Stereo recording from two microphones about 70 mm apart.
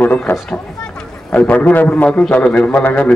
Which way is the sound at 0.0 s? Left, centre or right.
Left.